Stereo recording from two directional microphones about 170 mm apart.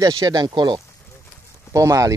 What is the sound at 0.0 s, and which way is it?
Speech, 20° right (ahead or behind).